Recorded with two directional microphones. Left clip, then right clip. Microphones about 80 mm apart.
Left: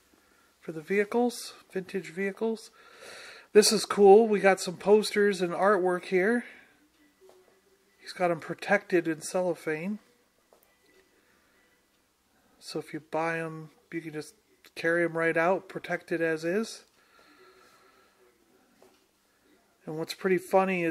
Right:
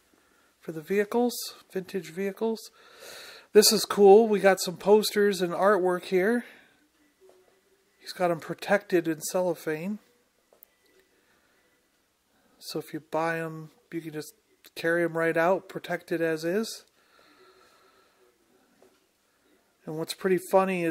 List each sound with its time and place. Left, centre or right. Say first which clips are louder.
0.6 s speech: right 1 dB; right
8.0 s speech: right 1 dB; right
12.5 s speech: right 1 dB; right
19.8 s speech: right 1 dB; right